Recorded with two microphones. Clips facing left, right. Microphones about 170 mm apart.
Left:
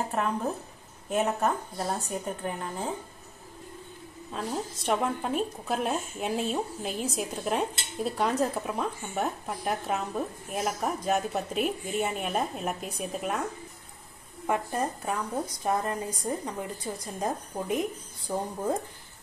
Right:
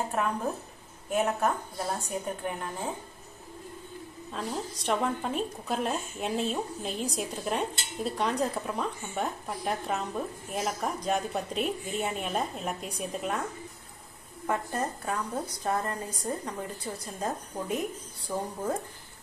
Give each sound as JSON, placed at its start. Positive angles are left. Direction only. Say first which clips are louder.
{"t": 1.1, "sound": "speech", "louder": "left 1 dB", "side_deg": 0}
{"t": 4.3, "sound": "speech", "louder": "left 2 dB", "side_deg": 0}
{"t": 14.4, "sound": "a woman's voice", "louder": "left 2 dB", "side_deg": 15}